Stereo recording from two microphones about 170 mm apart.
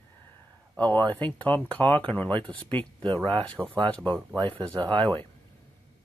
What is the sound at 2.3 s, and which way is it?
Speech, 30° right (ahead or behind).